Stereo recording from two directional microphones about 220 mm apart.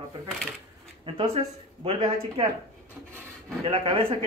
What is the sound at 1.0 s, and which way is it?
Speech, 25° right (ahead or behind).